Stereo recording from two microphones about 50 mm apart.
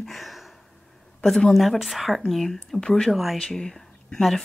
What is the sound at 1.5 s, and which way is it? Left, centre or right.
Speech, centre.